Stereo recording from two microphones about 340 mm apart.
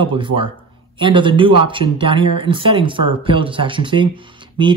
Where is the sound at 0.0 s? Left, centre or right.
Centre.